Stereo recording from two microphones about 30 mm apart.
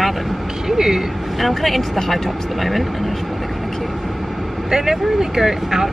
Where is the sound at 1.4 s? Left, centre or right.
Centre.